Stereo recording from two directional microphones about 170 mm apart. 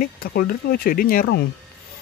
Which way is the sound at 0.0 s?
60° left (ahead or behind).